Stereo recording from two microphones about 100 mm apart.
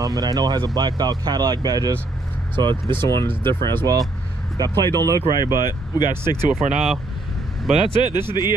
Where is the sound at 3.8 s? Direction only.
40° right (ahead or behind).